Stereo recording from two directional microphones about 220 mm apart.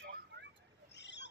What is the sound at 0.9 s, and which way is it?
Owl, 50° left (ahead or behind).